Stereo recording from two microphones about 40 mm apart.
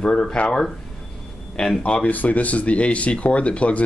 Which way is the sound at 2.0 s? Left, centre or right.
Left.